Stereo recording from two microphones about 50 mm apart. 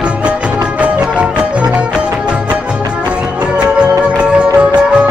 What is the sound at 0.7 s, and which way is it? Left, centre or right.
Music, right.